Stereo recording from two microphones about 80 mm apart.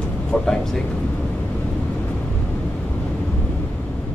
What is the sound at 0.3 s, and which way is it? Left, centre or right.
Speech, centre.